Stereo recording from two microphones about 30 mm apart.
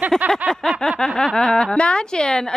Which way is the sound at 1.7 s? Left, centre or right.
Left.